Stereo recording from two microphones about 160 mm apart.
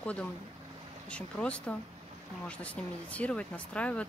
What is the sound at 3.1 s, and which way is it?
Speech, 10° left (ahead or behind).